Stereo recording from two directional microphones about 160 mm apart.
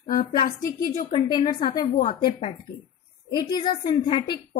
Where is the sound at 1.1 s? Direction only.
25° left (ahead or behind).